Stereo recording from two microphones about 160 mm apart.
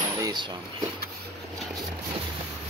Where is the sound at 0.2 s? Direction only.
25° right (ahead or behind).